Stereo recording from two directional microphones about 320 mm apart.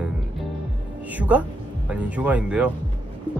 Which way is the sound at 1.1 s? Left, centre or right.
Centre.